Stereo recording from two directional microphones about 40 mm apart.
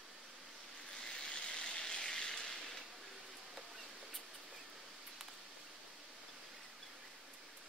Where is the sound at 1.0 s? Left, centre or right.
Left.